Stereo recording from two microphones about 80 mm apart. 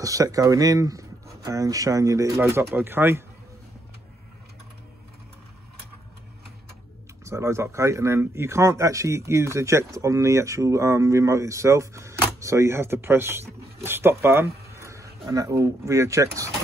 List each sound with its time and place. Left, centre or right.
0.0 s speech: right
7.2 s speech: right